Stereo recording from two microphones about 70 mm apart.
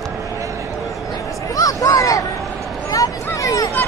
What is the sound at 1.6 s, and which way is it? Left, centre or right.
Speech, left.